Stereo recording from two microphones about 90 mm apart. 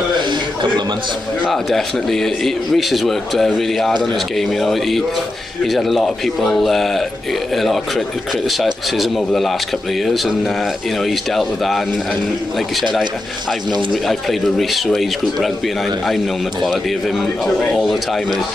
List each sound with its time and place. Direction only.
0.3 s a sound: 55° right (ahead or behind)
1.5 s a man's voice: centre (ahead or behind)
14.6 s a man's voice: centre (ahead or behind)
17.7 s a man's voice: centre (ahead or behind)